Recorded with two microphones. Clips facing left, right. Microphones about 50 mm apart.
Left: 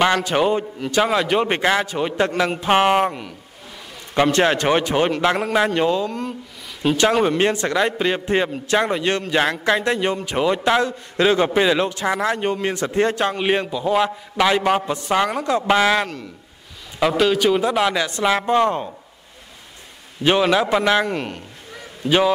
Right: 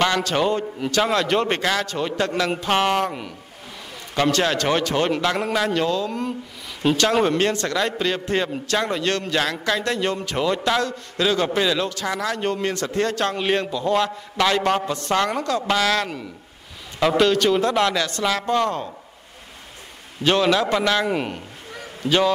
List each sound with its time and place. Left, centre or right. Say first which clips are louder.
0.0 s a man's voice: left 3 dB; centre
4.1 s a man's voice: left 3 dB; left
6.0 s speech: even; centre
7.3 s a man's voice: left 3 dB; centre
15.4 s a man's voice: left 4 dB; left
17.2 s a man's voice: left 1 dB; centre
20.2 s a man's voice: left 2 dB; centre
21.1 s speech: right 1 dB; centre
22.0 s a man's voice: left 2 dB; centre